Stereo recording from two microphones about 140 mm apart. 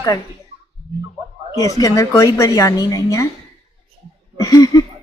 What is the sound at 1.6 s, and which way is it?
A woman's voice, 25° left (ahead or behind).